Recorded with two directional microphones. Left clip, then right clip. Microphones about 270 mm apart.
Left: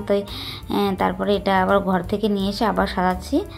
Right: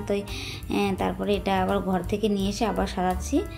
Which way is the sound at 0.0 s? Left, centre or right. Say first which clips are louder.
Left 7 dB; centre.